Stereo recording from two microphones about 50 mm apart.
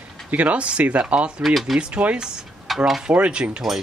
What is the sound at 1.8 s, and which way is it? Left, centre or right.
Speech, right.